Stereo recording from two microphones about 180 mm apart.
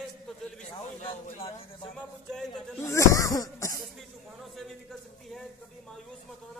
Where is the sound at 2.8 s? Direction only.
15° left (ahead or behind).